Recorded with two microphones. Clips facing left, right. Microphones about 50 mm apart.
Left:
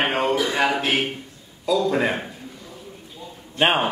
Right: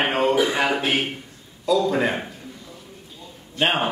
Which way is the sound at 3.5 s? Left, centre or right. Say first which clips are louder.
Left 2 dB; centre.